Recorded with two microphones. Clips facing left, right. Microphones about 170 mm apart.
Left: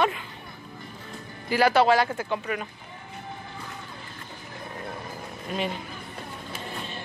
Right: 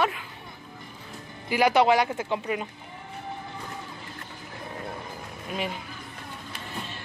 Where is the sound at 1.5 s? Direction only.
15° right (ahead or behind).